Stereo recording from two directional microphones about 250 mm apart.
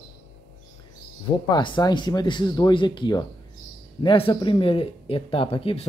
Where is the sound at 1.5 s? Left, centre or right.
Centre.